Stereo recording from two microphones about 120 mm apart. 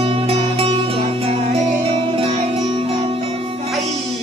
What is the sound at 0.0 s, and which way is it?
Music, 55° right (ahead or behind).